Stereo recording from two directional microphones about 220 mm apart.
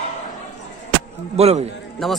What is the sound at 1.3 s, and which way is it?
Speech, 30° right (ahead or behind).